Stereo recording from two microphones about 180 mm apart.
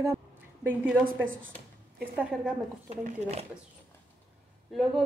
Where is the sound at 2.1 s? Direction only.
5° right (ahead or behind).